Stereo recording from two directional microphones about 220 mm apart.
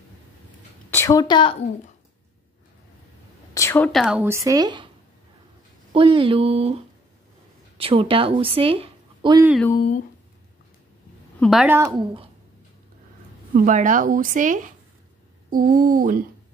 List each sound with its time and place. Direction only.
0.8 s a woman's voice: 10° left (ahead or behind)
3.5 s speech: 10° left (ahead or behind); by 4.8 s 20° right (ahead or behind)
5.9 s a woman's voice: 25° right (ahead or behind)
11.3 s a woman's voice: centre (ahead or behind)
12.0 s speech: 25° right (ahead or behind)
13.6 s speech: 35° right (ahead or behind)